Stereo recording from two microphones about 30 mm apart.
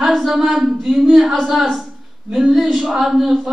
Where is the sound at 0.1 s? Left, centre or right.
Centre.